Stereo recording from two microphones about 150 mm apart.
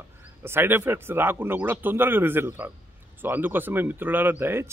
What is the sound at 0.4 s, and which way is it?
Speech, 15° right (ahead or behind).